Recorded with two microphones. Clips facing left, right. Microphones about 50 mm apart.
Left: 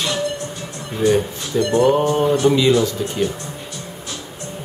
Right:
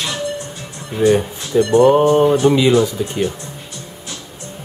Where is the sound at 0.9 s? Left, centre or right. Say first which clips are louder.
Right 3 dB; centre.